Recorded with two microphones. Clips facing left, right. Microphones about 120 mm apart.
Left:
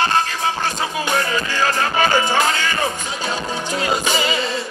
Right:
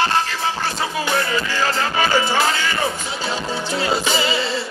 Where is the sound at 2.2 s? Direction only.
15° left (ahead or behind).